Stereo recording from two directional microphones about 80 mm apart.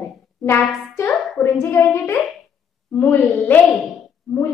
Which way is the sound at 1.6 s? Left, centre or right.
Left.